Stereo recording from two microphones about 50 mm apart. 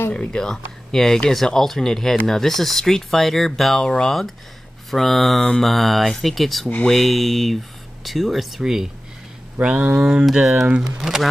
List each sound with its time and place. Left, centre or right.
0.1 s speech: centre
3.8 s speech: centre
4.9 s speech: centre
9.6 s speech: right
9.9 s speech: centre